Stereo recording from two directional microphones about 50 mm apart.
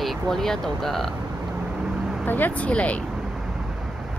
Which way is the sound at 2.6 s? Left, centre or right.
Left.